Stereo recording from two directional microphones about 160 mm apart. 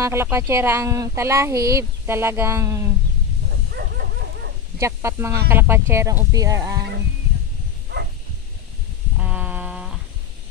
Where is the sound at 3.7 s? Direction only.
80° right.